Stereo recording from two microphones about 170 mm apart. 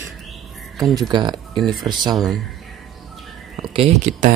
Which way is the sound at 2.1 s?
Centre (ahead or behind).